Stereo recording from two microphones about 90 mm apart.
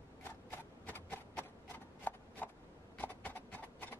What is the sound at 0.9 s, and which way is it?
Horse, 20° left (ahead or behind).